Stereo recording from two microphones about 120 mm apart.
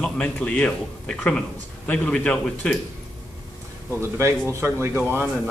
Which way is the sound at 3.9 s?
20° right (ahead or behind).